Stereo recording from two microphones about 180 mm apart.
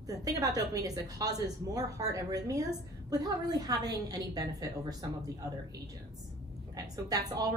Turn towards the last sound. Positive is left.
turn(degrees=-20)  # may be behind; listen again after turning